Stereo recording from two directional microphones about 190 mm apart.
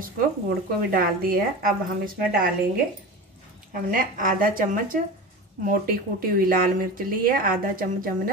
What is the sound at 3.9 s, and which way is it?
Speech, 45° right (ahead or behind).